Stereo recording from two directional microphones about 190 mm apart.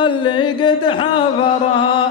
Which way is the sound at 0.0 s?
25° left (ahead or behind).